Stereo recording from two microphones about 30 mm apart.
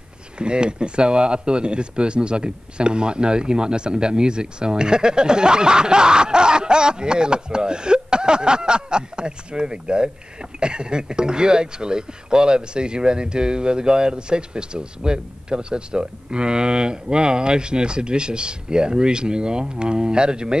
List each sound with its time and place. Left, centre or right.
0.4 s speech: right